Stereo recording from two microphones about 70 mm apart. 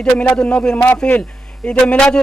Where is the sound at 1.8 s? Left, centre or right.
Centre.